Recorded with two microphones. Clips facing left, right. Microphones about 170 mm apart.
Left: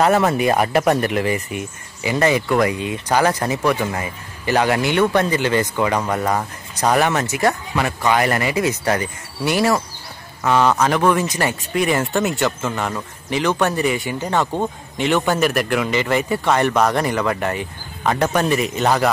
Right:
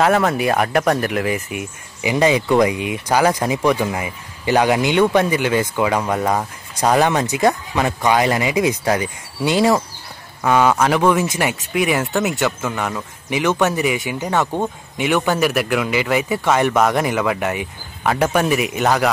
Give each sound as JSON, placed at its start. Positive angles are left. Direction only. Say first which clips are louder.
{"t": 0.0, "sound": "speech", "louder": "even", "side_deg": 0}
{"t": 13.9, "sound": "speech", "louder": "even", "side_deg": -15}